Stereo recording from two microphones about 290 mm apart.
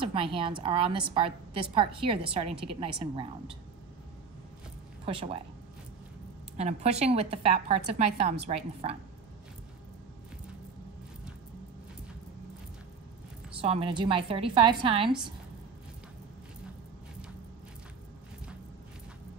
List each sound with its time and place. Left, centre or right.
0.0 s a woman's voice: centre
5.0 s a woman's voice: centre
6.5 s a woman's voice: right
13.6 s a woman's voice: centre